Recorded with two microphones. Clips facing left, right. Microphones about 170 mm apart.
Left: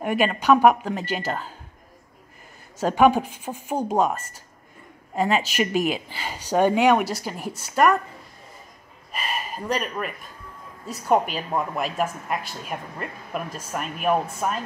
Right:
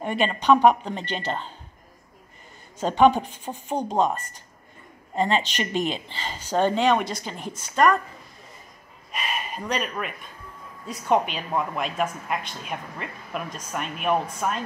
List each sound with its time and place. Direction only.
0.0 s speech: 5° left (ahead or behind)
2.8 s speech: 10° left (ahead or behind)
9.1 s a woman's voice: centre (ahead or behind)